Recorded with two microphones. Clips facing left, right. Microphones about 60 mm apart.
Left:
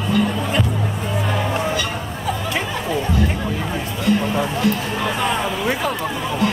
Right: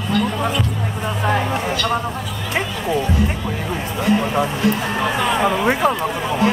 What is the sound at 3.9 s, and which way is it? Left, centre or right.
Music, right.